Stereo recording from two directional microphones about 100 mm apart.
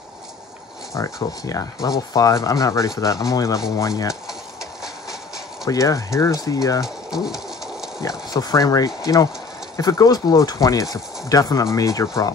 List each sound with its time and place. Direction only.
0.9 s speech: 35° left (ahead or behind)
4.3 s a sound: 5° right (ahead or behind)
5.7 s speech: 35° left (ahead or behind)
6.8 s pigeon: 5° right (ahead or behind)
8.0 s speech: 35° left (ahead or behind)